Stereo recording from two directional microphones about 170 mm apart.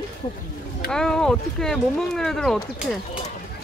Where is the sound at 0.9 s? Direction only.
5° left (ahead or behind).